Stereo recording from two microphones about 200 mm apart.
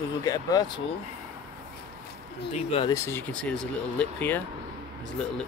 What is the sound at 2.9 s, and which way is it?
Speech, 10° left (ahead or behind).